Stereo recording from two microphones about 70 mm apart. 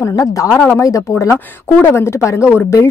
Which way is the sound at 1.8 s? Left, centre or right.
Left.